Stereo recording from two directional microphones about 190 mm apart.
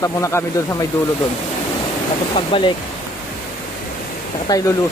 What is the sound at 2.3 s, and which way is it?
Speech, 30° left (ahead or behind).